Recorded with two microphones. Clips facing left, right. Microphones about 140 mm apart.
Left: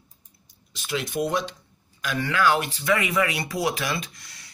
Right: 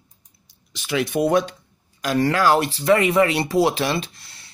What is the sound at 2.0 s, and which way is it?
Speech, 35° right (ahead or behind).